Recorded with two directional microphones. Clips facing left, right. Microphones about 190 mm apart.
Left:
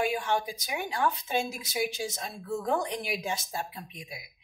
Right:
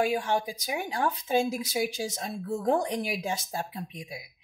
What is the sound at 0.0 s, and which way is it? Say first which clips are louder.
Speech: right 2 dB; 40° right (ahead or behind).